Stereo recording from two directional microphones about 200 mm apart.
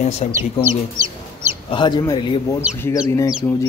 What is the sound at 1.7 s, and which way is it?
Speech, 20° left (ahead or behind).